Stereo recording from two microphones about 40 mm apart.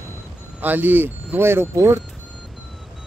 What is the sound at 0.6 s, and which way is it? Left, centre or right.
Speech, right.